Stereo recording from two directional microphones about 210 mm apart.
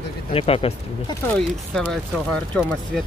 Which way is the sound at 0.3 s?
25° left (ahead or behind).